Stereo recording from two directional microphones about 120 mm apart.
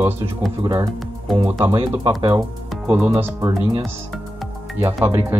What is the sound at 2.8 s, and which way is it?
Speech, 15° right (ahead or behind).